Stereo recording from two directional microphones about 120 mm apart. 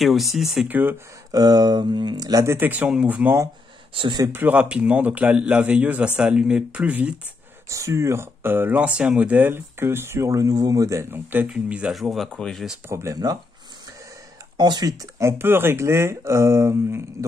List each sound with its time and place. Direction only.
0.0 s speech: centre (ahead or behind)
0.7 s a man's voice: 15° right (ahead or behind)
1.3 s speech: 30° right (ahead or behind); by 3.3 s 10° right (ahead or behind)
3.9 s speech: 45° right (ahead or behind)
4.3 s a man's voice: 15° right (ahead or behind)
7.7 s speech: 25° right (ahead or behind)
11.4 s speech: 10° right (ahead or behind)
12.8 s speech: 25° right (ahead or behind)
14.6 s speech: 35° right (ahead or behind)